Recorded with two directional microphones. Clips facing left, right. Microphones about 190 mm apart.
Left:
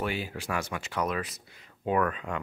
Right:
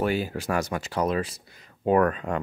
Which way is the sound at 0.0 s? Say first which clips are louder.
Right 7 dB; 40° right (ahead or behind).